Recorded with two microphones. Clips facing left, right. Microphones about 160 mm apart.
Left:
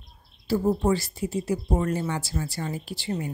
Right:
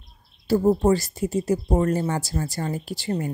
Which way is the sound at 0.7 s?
40° right (ahead or behind).